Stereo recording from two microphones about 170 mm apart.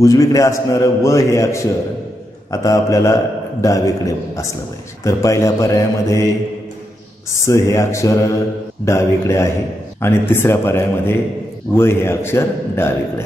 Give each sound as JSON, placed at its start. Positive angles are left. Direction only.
{"t": 0.0, "sound": "a man's voice", "side_deg": 20}
{"t": 5.0, "sound": "a man's voice", "side_deg": 15}
{"t": 7.3, "sound": "a man's voice", "side_deg": 15}